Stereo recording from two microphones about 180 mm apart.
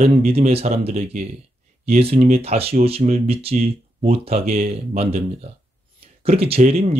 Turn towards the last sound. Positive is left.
turn(degrees=-35)  # may be behind; listen again after turning